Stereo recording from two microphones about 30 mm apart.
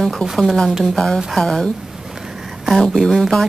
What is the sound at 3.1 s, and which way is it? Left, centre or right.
Speech, centre.